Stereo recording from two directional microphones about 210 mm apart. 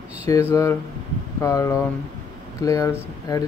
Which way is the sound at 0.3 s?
15° left (ahead or behind).